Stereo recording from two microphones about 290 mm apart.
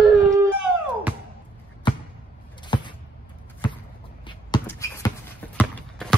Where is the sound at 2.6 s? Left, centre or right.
Centre.